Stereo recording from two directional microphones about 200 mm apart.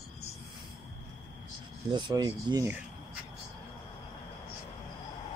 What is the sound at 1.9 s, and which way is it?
Speech, 20° right (ahead or behind).